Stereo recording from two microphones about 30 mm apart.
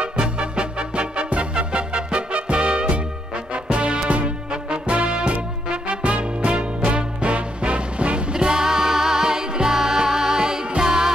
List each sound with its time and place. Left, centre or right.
0.0 s music: right
8.3 s music: right